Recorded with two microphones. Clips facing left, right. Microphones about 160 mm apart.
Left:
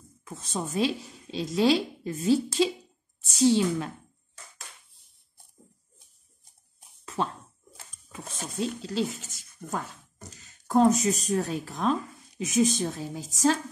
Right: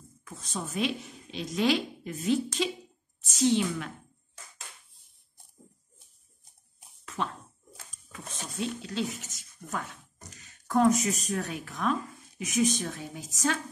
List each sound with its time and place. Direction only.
0.2 s a woman's voice: 30° left (ahead or behind)
8.1 s a sound: 35° left (ahead or behind)
9.6 s speech: 45° left (ahead or behind)
10.3 s speech: 30° left (ahead or behind)